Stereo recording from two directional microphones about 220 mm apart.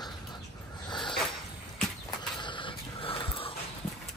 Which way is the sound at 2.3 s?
20° left (ahead or behind).